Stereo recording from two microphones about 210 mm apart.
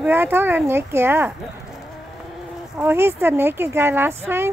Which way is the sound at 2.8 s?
10° right (ahead or behind).